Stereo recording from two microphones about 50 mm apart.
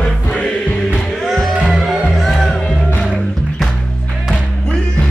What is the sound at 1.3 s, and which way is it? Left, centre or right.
Music, centre.